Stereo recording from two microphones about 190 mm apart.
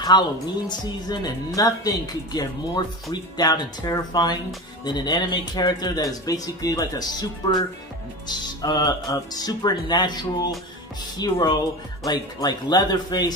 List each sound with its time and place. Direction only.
0.0 s speech: 20° left (ahead or behind)